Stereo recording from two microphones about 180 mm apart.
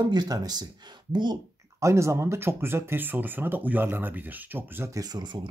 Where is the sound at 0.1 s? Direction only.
20° right (ahead or behind).